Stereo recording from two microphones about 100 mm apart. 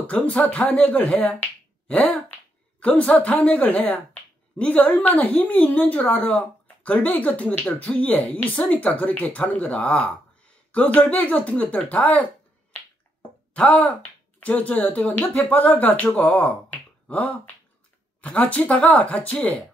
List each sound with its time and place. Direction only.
0.0 s speech: 15° left (ahead or behind)
13.5 s speech: 15° left (ahead or behind)